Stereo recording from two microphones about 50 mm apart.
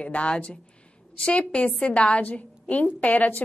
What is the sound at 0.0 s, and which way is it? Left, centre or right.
Speech, left.